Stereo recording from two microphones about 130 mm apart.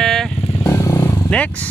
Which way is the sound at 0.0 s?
5° left (ahead or behind).